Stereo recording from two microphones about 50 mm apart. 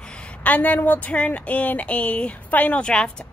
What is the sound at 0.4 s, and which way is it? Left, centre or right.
Speech, left.